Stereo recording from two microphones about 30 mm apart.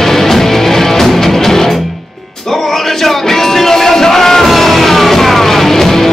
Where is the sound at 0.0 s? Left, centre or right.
Centre.